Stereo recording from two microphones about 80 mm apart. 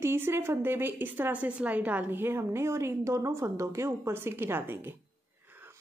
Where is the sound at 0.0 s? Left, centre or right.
Right.